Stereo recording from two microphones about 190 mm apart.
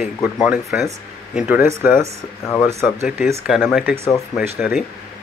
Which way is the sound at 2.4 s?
10° left (ahead or behind).